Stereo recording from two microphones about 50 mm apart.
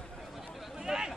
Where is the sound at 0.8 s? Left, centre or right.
Centre.